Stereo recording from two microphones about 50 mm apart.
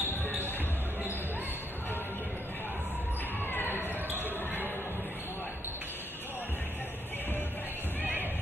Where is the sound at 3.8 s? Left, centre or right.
Left.